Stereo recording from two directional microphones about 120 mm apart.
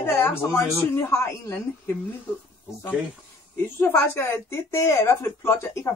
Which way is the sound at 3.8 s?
20° left (ahead or behind).